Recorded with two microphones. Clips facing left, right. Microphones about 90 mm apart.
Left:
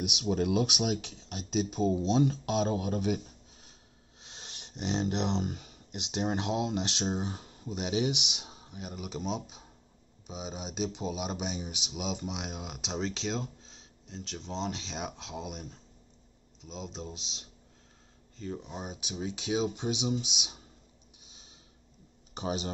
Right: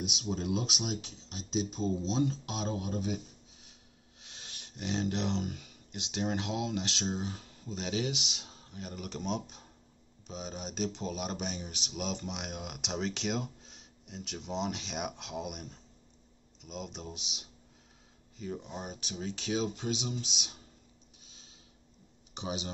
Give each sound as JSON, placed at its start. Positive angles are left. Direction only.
{"t": 0.0, "sound": "speech", "side_deg": 75}
{"t": 4.2, "sound": "speech", "side_deg": 25}
{"t": 18.7, "sound": "speech", "side_deg": 5}
{"t": 22.3, "sound": "speech", "side_deg": 40}